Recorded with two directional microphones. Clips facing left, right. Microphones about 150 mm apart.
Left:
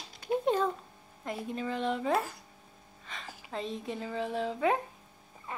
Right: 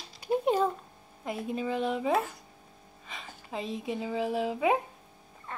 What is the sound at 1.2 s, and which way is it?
A woman's voice, 10° right (ahead or behind).